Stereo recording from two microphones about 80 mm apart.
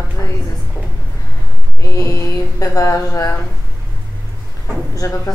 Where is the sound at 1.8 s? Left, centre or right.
Left.